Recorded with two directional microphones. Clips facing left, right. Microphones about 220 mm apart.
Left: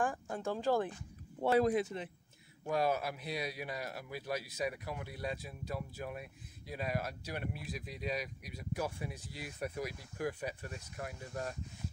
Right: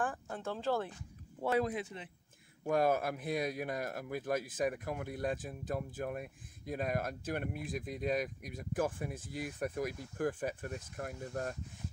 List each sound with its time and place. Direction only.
0.0 s speech: 10° left (ahead or behind)
1.4 s speech: 30° left (ahead or behind)
2.6 s speech: 50° right (ahead or behind)